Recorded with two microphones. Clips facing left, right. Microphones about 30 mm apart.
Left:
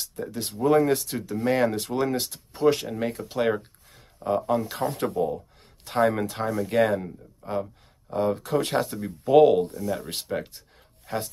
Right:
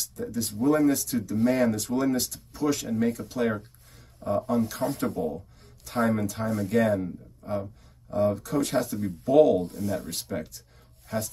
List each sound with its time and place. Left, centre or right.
0.0 s speech: left
7.4 s speech: left